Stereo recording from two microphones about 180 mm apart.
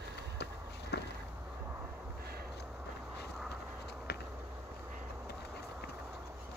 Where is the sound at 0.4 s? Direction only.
65° left (ahead or behind).